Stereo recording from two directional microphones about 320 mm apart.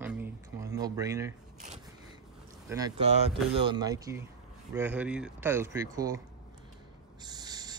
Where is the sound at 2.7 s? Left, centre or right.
Centre.